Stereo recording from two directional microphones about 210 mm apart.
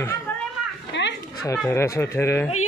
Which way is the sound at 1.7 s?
10° left (ahead or behind).